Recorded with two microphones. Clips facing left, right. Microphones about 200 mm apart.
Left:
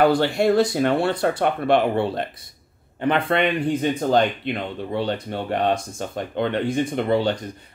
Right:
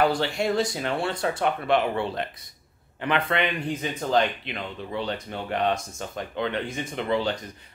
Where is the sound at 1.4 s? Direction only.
50° left (ahead or behind).